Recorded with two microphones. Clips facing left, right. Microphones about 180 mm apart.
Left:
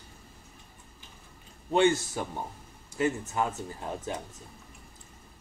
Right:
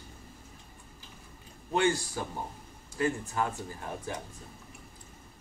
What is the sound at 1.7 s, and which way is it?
Speech, 25° left (ahead or behind).